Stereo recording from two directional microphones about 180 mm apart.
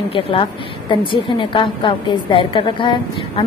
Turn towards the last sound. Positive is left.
turn(degrees=25)  # may be behind; listen again after turning